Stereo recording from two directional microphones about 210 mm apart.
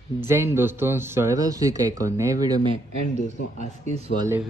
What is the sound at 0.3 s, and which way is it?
Speech, 10° right (ahead or behind).